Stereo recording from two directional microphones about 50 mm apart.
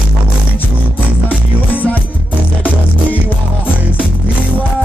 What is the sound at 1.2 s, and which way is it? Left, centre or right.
Music, left.